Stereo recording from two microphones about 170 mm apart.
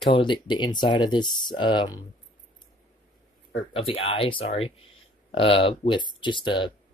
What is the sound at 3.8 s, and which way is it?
Speech, 35° left (ahead or behind).